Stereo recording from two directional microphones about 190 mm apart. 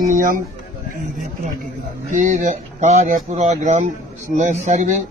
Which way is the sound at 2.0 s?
40° right (ahead or behind).